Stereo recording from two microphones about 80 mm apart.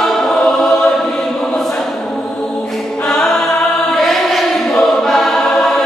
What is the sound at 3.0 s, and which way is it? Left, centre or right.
Chant, centre.